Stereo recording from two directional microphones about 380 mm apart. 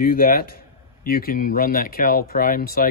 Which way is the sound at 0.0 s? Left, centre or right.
Left.